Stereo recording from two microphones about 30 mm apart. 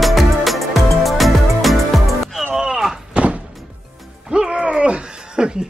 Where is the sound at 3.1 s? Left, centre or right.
Right.